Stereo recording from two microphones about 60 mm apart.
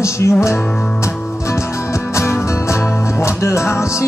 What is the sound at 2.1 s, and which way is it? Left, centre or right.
Music, left.